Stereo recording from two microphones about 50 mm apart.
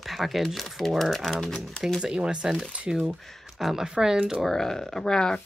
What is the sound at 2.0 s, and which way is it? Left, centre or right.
Speech, centre.